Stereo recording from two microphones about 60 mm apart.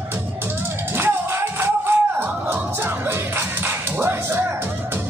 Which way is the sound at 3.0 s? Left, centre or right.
Right.